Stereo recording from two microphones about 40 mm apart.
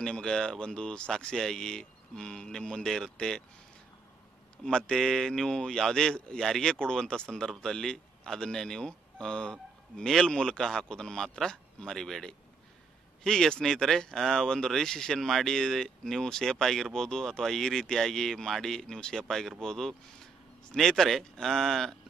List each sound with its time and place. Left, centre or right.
0.0 s speech: centre
4.6 s speech: centre
6.1 s speech: left
6.4 s speech: centre